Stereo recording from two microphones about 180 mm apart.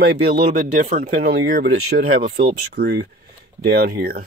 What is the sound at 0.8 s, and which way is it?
Speech, 45° right (ahead or behind).